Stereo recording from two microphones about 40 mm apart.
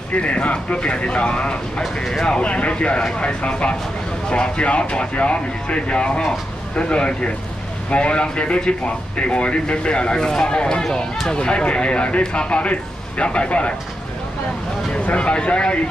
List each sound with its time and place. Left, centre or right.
0.2 s a man's voice: left
15.0 s a man's voice: left